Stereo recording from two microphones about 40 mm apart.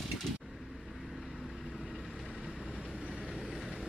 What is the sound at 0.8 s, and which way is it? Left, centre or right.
Vehicle, centre.